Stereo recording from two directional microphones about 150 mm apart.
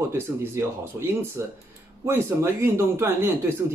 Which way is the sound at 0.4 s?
15° right (ahead or behind).